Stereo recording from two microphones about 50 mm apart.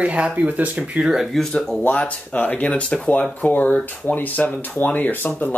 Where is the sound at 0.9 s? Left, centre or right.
Centre.